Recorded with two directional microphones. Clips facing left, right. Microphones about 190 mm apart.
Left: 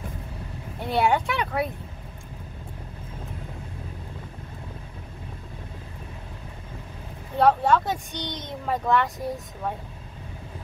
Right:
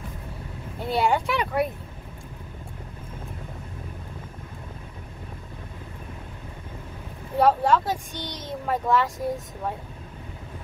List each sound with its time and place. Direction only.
0.8 s a child's voice: centre (ahead or behind)
7.3 s a child's voice: 5° right (ahead or behind)
8.1 s a child's voice: 20° left (ahead or behind)
8.4 s a child's voice: centre (ahead or behind)